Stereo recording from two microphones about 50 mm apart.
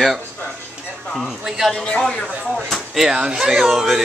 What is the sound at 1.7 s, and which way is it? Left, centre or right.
Speech, centre.